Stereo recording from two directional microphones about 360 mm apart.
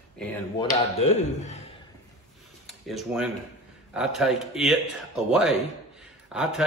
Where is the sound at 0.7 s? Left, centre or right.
Centre.